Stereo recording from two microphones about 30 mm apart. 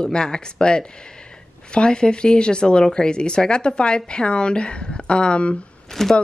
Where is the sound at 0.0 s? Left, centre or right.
Left.